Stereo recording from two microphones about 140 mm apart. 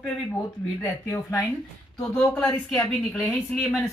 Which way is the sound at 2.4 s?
20° left (ahead or behind).